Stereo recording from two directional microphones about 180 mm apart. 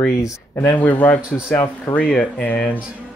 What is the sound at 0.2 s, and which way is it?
Speech, 15° left (ahead or behind).